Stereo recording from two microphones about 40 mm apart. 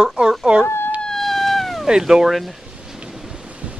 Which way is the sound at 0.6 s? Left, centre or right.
Left.